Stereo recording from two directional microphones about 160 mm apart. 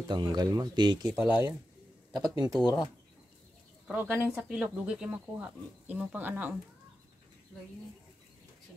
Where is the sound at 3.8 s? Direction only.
5° right (ahead or behind).